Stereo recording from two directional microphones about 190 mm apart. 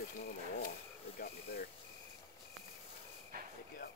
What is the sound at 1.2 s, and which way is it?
Speech, 55° left (ahead or behind).